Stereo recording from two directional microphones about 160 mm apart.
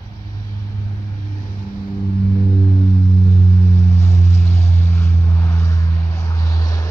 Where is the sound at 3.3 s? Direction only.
20° left (ahead or behind).